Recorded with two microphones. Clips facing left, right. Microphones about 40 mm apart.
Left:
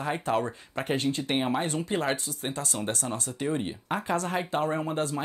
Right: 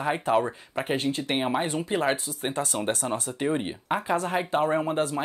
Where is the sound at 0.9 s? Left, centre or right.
Right.